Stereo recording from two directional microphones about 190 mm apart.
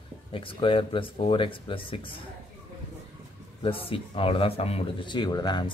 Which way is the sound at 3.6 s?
30° left (ahead or behind).